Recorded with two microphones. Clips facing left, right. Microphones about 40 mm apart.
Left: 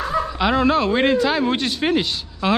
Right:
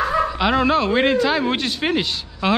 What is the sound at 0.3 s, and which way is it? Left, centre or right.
A man's voice, centre.